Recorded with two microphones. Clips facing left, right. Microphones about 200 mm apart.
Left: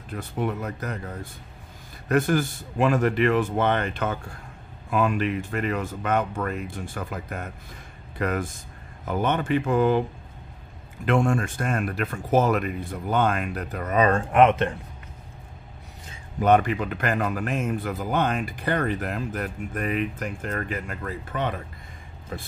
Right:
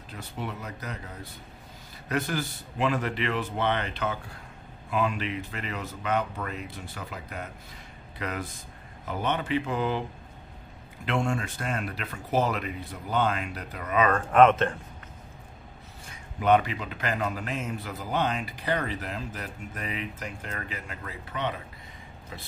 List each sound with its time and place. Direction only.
0.1 s a man's voice: 50° left (ahead or behind)
11.1 s a man's voice: 50° left (ahead or behind); by 14.2 s 35° left (ahead or behind)
14.3 s speech: 15° left (ahead or behind)
16.3 s a man's voice: 45° left (ahead or behind)